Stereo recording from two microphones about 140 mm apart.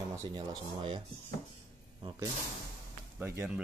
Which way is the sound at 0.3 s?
35° right (ahead or behind).